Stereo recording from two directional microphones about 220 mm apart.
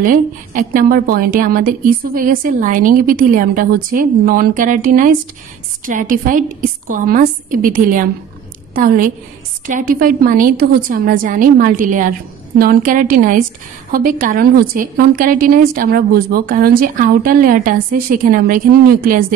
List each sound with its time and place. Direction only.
0.0 s a woman's voice: 40° right (ahead or behind)